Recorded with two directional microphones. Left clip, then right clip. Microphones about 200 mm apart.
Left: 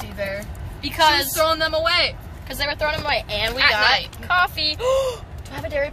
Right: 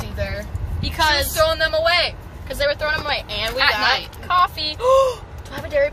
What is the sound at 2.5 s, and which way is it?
Speech, 15° left (ahead or behind).